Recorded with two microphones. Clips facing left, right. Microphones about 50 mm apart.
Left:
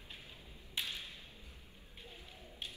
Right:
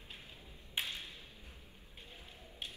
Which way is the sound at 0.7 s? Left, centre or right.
Right.